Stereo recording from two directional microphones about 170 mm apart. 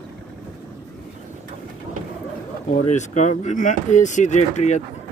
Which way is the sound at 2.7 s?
45° left (ahead or behind).